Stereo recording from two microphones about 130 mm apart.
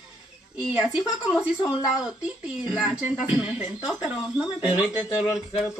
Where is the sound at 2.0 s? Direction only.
10° right (ahead or behind).